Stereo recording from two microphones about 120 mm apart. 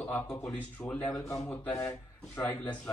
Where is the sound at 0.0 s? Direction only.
20° left (ahead or behind).